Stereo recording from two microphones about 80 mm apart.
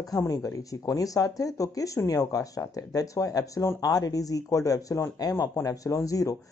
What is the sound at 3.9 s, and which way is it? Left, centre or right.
Speech, left.